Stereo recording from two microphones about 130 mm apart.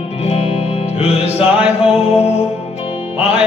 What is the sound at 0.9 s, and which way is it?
Music, 50° left (ahead or behind).